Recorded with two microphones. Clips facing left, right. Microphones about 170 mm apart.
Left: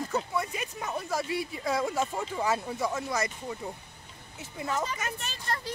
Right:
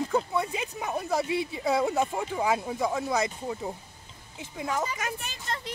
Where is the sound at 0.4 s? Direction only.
20° right (ahead or behind).